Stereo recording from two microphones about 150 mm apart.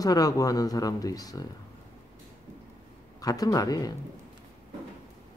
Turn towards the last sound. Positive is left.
turn(degrees=25)  # may be behind; listen again after turning